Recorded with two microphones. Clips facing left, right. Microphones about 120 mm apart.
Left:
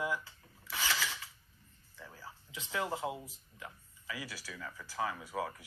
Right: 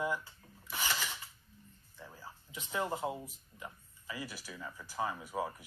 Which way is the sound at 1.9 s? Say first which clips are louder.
Even; 15° right (ahead or behind).